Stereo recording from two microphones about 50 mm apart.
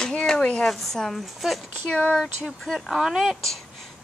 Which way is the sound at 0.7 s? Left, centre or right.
Centre.